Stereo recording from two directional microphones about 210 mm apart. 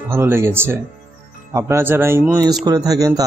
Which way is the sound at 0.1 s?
10° right (ahead or behind).